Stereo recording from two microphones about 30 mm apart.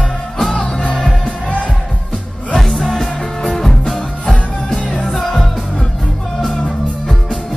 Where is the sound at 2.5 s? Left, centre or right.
Centre.